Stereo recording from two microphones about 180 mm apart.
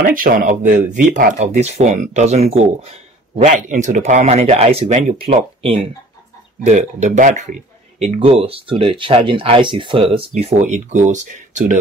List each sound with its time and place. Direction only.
0.0 s speech: 50° right (ahead or behind)
8.0 s speech: 30° right (ahead or behind)